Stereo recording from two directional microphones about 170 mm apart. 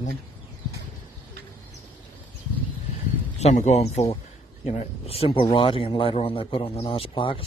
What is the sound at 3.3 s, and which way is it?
Speech, 45° left (ahead or behind).